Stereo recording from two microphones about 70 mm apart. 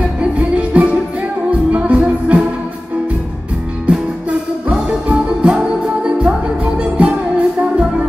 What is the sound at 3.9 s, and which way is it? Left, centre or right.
Music, centre.